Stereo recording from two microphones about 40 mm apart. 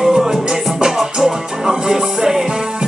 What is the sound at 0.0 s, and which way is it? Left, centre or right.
Music, centre.